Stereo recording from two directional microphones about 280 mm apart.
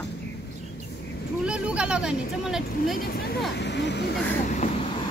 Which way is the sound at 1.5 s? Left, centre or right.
Centre.